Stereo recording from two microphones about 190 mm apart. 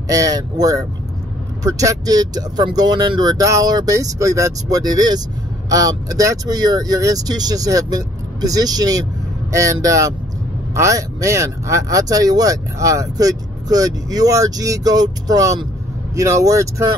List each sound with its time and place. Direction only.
0.1 s speech: 20° right (ahead or behind)